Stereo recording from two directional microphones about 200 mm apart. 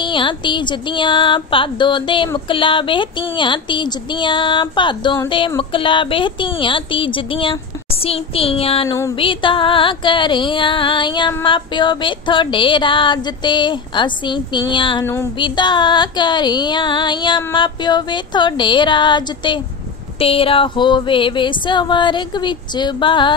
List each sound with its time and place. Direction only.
0.0 s music: 25° left (ahead or behind)
8.8 s a sound: 15° left (ahead or behind)
9.2 s music: 25° left (ahead or behind)